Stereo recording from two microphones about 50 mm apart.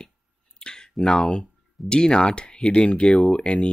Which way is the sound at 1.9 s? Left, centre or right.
Centre.